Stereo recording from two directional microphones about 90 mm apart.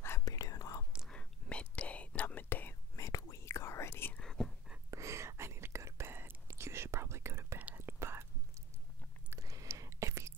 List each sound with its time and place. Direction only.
0.2 s whispering: 40° left (ahead or behind)
1.1 s whispering: 10° left (ahead or behind)
3.0 s whispering: 35° left (ahead or behind)
4.1 s whispering: 5° left (ahead or behind)
4.9 s whispering: 35° right (ahead or behind)
9.4 s a sound: 40° right (ahead or behind)